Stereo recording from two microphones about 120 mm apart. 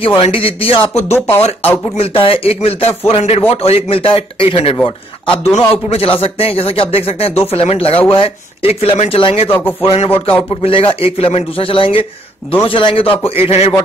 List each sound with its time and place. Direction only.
0.0 s speech: 50° left (ahead or behind)
9.5 s speech: 20° left (ahead or behind)
9.8 s speech: 50° left (ahead or behind)